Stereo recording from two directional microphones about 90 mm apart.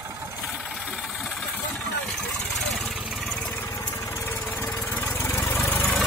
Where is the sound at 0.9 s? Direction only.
5° right (ahead or behind).